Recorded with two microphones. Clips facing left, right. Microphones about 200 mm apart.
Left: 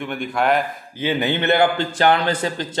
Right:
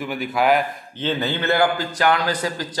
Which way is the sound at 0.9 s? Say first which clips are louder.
Left 2 dB; 10° left (ahead or behind).